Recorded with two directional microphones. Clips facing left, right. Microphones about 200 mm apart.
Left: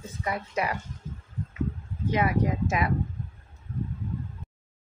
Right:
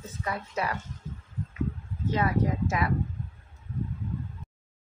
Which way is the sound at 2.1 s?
15° left (ahead or behind).